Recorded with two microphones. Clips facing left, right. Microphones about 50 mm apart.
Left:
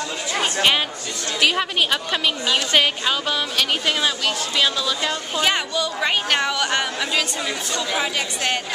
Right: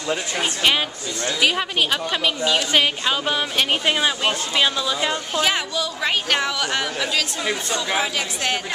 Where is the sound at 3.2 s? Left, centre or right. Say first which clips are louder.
Right 1 dB; right.